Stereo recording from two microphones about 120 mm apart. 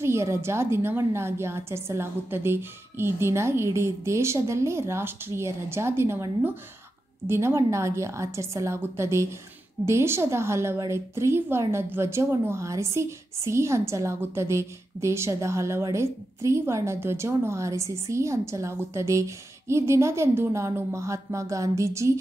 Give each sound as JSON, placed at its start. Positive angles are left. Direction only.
{"t": 0.0, "sound": "a woman's voice", "side_deg": -20}